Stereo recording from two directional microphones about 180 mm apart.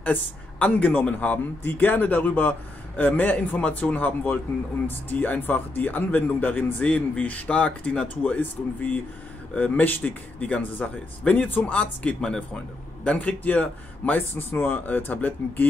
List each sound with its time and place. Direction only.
0.0 s speech: 5° left (ahead or behind)